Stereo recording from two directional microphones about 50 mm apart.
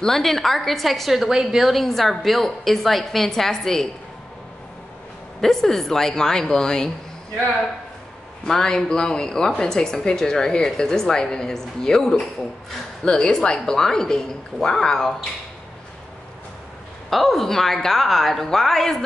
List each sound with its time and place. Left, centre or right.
0.0 s a woman's voice: centre
5.4 s a woman's voice: centre
8.5 s a woman's voice: centre
17.1 s a woman's voice: centre